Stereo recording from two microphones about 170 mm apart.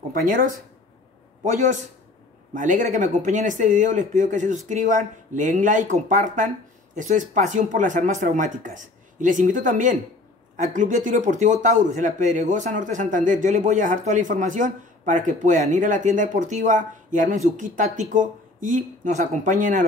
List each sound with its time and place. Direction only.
0.1 s speech: 55° right (ahead or behind)
1.4 s a man's voice: 45° right (ahead or behind)